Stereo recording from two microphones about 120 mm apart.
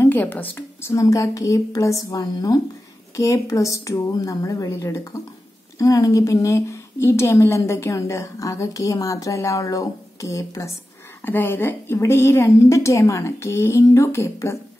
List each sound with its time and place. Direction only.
0.0 s a woman's voice: 15° left (ahead or behind)